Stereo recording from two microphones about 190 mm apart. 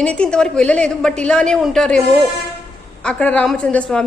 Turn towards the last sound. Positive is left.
turn(degrees=5)  # may be behind; listen again after turning